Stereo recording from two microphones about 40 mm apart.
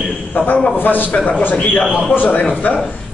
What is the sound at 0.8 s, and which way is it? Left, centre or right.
Speech, left.